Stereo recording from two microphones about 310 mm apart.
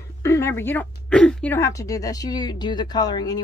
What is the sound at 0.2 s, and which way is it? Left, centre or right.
Speech, centre.